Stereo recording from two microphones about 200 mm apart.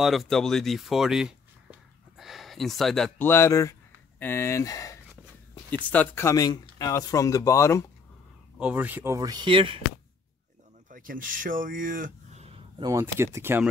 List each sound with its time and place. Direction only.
0.0 s speech: centre (ahead or behind)
8.5 s speech: 5° right (ahead or behind); by 9.8 s 25° right (ahead or behind)
10.9 s speech: 45° right (ahead or behind); by 13.7 s 10° right (ahead or behind)